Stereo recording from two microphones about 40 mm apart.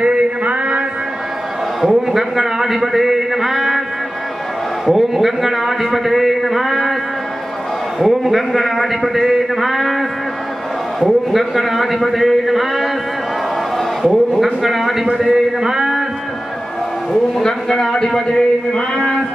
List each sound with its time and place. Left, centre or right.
0.0 s a sound: right
1.8 s a man's voice: centre
4.8 s a man's voice: centre
8.0 s a man's voice: centre
14.0 s a man's voice: centre
17.1 s a man's voice: centre